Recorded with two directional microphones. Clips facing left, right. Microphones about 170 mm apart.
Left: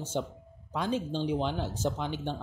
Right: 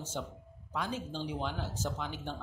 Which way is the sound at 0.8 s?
30° left (ahead or behind).